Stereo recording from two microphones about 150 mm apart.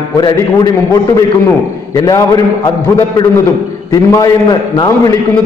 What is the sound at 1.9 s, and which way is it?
Speech, 25° left (ahead or behind).